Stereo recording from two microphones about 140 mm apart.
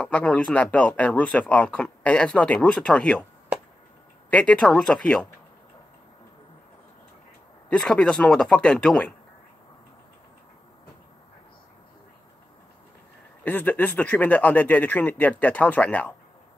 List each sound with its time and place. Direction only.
0.0 s speech: 10° left (ahead or behind)
4.3 s speech: 10° left (ahead or behind)
7.7 s speech: 5° left (ahead or behind)
13.4 s speech: 10° left (ahead or behind)